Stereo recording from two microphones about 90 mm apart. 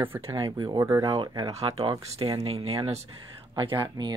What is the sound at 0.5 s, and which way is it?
Speech, 60° right (ahead or behind).